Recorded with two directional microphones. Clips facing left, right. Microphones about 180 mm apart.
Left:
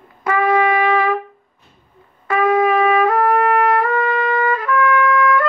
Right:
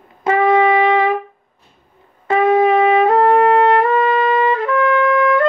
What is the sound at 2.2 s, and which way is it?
Trumpet, 25° right (ahead or behind).